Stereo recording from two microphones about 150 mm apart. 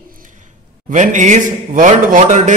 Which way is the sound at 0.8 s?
55° right (ahead or behind).